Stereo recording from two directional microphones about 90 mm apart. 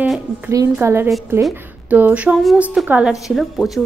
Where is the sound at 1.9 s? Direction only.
20° right (ahead or behind).